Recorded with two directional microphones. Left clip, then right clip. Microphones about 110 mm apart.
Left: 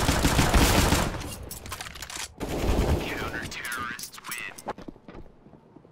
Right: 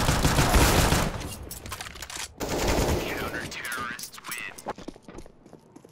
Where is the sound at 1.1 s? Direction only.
Centre (ahead or behind).